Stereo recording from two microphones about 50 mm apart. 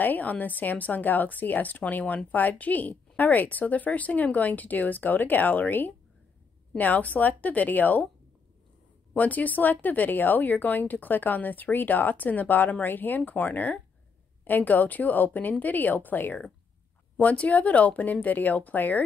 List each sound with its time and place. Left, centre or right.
0.0 s a woman's voice: left
9.1 s a woman's voice: left